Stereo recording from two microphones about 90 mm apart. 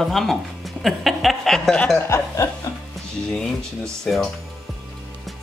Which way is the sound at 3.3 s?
5° left (ahead or behind).